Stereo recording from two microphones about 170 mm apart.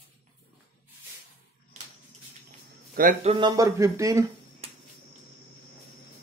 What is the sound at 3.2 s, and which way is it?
Speech, 30° right (ahead or behind).